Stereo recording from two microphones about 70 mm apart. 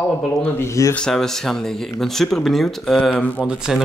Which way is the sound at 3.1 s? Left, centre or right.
Centre.